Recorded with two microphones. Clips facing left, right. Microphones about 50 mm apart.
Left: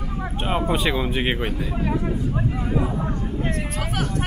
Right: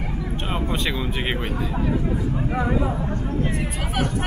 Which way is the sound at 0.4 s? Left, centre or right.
Centre.